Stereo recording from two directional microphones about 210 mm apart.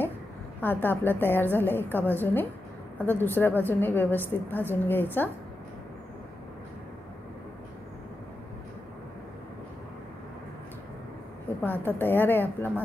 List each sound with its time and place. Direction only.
0.6 s a woman's voice: 10° left (ahead or behind)
11.4 s a woman's voice: 10° left (ahead or behind)